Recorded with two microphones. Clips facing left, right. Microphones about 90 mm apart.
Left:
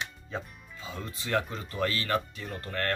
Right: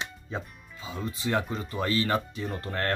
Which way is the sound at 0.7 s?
15° right (ahead or behind).